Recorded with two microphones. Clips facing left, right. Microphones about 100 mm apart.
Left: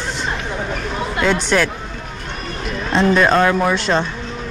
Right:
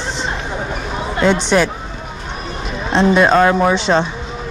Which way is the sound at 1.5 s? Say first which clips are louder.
Right 2 dB; 5° right (ahead or behind).